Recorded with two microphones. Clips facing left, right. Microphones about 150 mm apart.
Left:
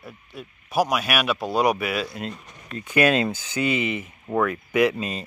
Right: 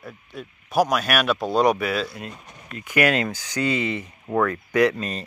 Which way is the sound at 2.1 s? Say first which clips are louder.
Left 3 dB; 25° left (ahead or behind).